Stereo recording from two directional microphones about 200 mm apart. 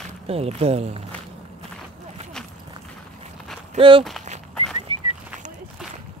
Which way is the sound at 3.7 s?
25° right (ahead or behind).